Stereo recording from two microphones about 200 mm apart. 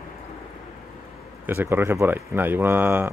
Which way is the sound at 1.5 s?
10° right (ahead or behind).